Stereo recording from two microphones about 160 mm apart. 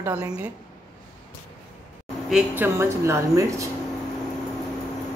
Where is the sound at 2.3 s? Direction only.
10° right (ahead or behind).